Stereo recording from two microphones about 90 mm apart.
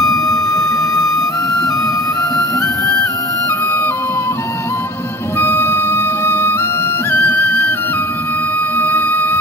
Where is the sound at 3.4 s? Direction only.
30° left (ahead or behind).